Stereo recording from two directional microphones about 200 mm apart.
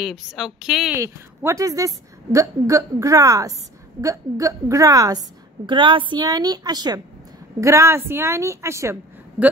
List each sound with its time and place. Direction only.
0.0 s a woman's voice: centre (ahead or behind)
0.9 s a woman's voice: 15° right (ahead or behind)